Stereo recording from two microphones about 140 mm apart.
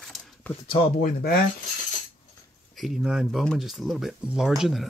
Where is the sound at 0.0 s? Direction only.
5° left (ahead or behind).